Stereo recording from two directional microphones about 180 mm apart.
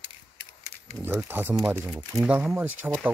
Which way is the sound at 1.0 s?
10° right (ahead or behind).